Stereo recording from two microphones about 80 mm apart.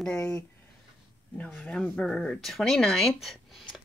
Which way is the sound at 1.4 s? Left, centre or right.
Left.